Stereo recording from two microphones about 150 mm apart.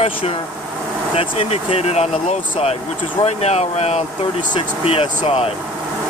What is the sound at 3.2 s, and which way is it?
Speech, 45° left (ahead or behind).